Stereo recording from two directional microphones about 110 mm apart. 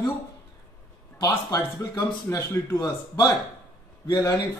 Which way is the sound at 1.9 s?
20° left (ahead or behind).